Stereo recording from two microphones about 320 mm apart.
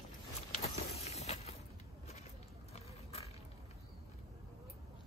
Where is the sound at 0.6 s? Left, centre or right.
Centre.